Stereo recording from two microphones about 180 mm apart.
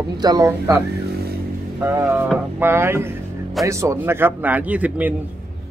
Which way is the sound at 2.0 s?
10° right (ahead or behind).